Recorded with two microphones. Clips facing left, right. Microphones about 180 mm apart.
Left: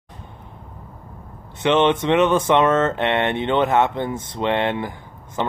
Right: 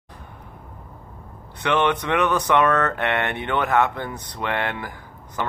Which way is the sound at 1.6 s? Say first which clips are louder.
Left 4 dB; 25° left (ahead or behind).